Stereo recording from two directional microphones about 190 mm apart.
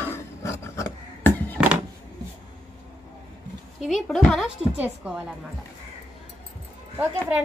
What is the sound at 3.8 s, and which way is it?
A woman's voice, centre (ahead or behind).